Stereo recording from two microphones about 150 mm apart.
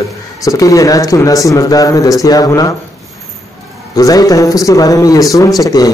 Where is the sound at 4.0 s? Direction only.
25° left (ahead or behind).